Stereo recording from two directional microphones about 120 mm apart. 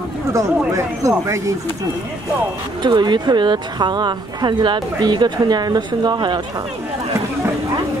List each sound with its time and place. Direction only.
0.7 s speech: 25° right (ahead or behind)
2.8 s speech: 40° right (ahead or behind)